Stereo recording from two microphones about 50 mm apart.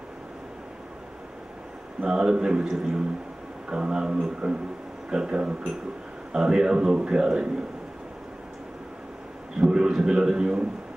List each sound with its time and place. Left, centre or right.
2.0 s a man's voice: centre
9.6 s a man's voice: centre